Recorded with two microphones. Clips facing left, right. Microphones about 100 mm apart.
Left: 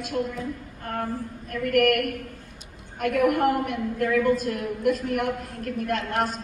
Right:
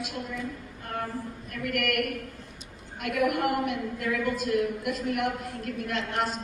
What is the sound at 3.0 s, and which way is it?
A woman's voice, 45° left (ahead or behind).